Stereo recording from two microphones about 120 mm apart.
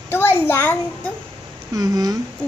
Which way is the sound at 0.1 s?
20° left (ahead or behind).